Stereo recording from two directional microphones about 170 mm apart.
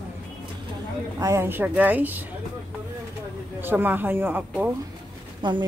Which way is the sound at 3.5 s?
10° right (ahead or behind).